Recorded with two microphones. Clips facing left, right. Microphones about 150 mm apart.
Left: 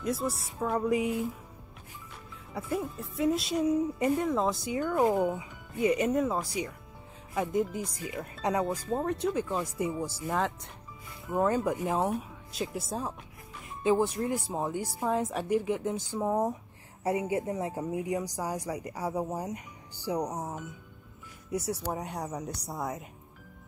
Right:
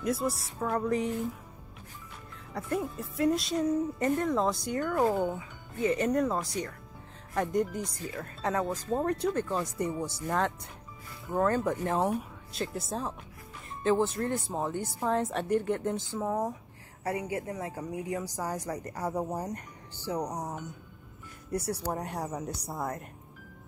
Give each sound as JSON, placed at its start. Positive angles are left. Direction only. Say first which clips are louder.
{"t": 0.0, "sound": "speech", "louder": "right 1 dB", "side_deg": 0}
{"t": 2.5, "sound": "speech", "louder": "right 1 dB", "side_deg": 0}
{"t": 16.1, "sound": "speech", "louder": "left 2 dB", "side_deg": 15}